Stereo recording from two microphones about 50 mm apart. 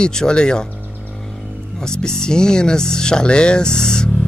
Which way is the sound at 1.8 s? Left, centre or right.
Centre.